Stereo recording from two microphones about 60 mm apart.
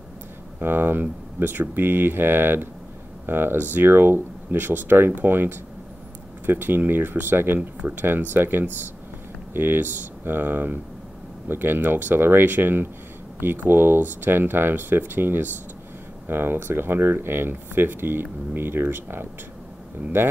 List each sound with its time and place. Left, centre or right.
0.6 s speech: right